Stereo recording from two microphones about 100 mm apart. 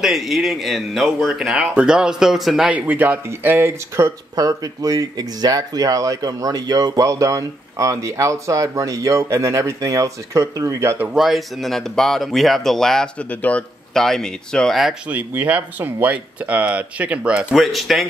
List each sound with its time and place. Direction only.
0.0 s speech: centre (ahead or behind)
2.9 s speech: 15° right (ahead or behind)
4.4 s speech: 40° right (ahead or behind)
11.1 s speech: centre (ahead or behind)
15.0 s speech: 15° right (ahead or behind)
17.6 s speech: centre (ahead or behind)